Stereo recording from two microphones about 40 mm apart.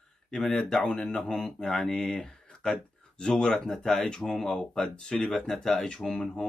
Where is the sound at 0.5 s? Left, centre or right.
Centre.